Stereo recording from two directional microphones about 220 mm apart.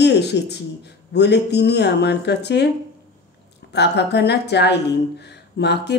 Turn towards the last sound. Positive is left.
turn(degrees=50)  # may be behind; listen again after turning